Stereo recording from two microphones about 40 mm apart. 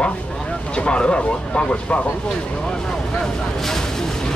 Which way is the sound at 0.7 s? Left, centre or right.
Left.